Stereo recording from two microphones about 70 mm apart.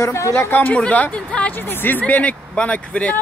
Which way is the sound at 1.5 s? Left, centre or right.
Left.